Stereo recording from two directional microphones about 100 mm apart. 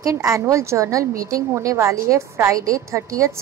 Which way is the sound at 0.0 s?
30° right (ahead or behind).